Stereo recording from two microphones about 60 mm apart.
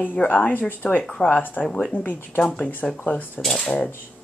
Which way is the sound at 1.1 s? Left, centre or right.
Centre.